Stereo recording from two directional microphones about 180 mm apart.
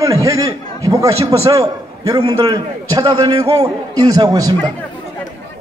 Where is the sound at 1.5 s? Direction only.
20° right (ahead or behind).